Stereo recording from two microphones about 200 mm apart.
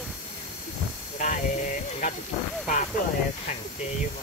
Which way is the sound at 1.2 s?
40° left (ahead or behind).